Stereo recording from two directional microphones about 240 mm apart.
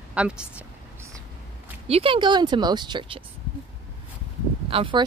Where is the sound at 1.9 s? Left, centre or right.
Right.